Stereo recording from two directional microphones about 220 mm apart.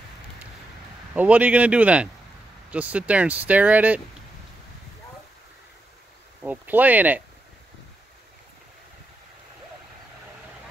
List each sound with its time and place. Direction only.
1.1 s speech: 5° right (ahead or behind)
6.4 s speech: 5° right (ahead or behind)